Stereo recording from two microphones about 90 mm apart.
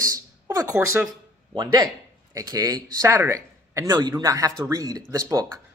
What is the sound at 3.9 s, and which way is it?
A man's voice, 50° right (ahead or behind).